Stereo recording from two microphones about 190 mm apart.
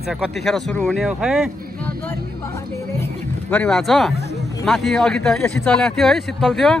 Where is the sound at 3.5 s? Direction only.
5° left (ahead or behind).